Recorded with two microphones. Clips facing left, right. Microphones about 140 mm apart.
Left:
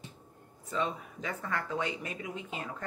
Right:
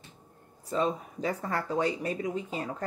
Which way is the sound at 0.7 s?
35° right (ahead or behind).